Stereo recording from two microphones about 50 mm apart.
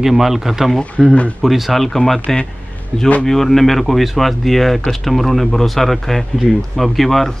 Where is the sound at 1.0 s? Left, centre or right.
Left.